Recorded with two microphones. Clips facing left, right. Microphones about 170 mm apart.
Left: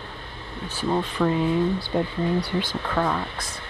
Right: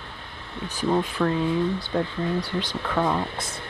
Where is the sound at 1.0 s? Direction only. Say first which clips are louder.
Even; 10° right (ahead or behind).